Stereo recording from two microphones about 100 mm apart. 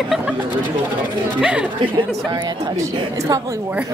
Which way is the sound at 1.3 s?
10° right (ahead or behind).